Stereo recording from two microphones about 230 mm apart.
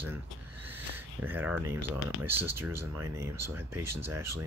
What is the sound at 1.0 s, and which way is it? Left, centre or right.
Speech, centre.